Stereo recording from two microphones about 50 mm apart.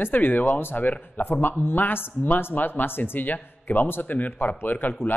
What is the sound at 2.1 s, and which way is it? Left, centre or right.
Speech, left.